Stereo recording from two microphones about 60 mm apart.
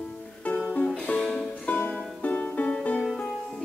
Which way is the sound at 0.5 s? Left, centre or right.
Left.